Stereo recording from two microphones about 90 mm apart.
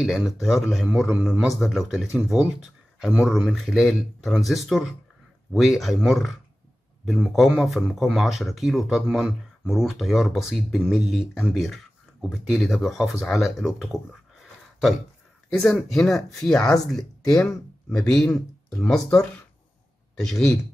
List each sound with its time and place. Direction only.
0.0 s speech: centre (ahead or behind)
1.1 s a man's voice: 15° right (ahead or behind)
1.6 s speech: centre (ahead or behind)
2.6 s a sound: centre (ahead or behind)
3.3 s speech: centre (ahead or behind)
14.4 s a sound: centre (ahead or behind)
15.5 s speech: 5° left (ahead or behind)